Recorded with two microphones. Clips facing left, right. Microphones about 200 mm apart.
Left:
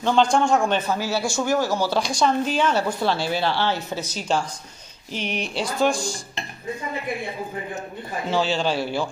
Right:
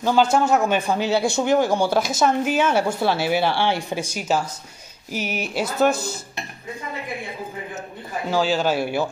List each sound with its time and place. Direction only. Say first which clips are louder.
0.0 s a woman's voice: right 1 dB; 5° right (ahead or behind)
2.0 s a woman's voice: right 1 dB; 5° right (ahead or behind)
8.3 s speech: right 2 dB; centre (ahead or behind)